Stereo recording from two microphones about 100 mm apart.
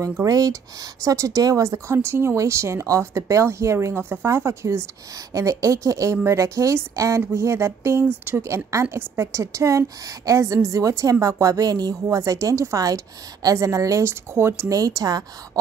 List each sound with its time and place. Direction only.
0.0 s a woman's voice: 35° right (ahead or behind)